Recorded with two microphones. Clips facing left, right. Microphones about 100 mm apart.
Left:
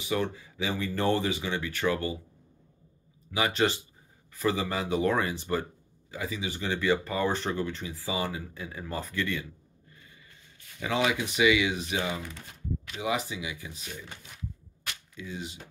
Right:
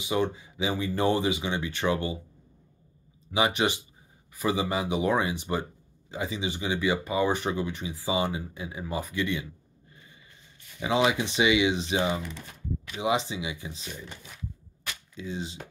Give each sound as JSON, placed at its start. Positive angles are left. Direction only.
{"t": 0.0, "sound": "speech", "side_deg": -20}
{"t": 3.3, "sound": "speech", "side_deg": -20}
{"t": 10.8, "sound": "speech", "side_deg": -20}
{"t": 15.1, "sound": "speech", "side_deg": -30}